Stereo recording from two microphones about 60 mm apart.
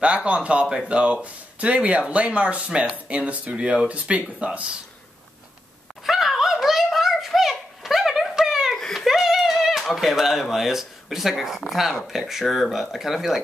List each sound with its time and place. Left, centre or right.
0.0 s speech: centre
6.0 s a sound: centre
8.7 s speech: centre